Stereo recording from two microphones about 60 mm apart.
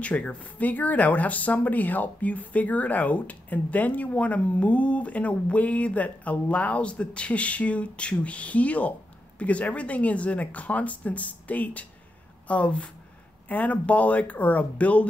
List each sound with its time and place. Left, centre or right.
0.0 s speech: left